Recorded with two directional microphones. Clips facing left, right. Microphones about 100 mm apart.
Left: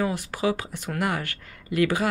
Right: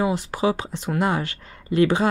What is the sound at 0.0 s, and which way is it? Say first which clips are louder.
Speech: right 4 dB; 20° right (ahead or behind).